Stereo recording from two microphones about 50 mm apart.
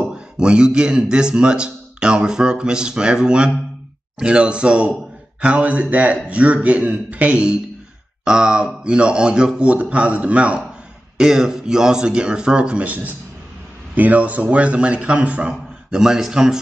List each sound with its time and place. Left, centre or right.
0.0 s a man's voice: centre
11.1 s a man's voice: centre; by 15.5 s right
15.9 s a man's voice: centre